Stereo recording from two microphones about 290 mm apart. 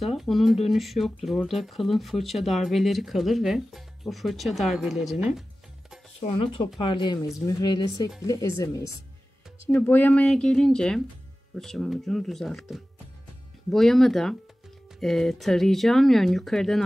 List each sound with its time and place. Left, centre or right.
0.0 s speech: centre
6.2 s speech: centre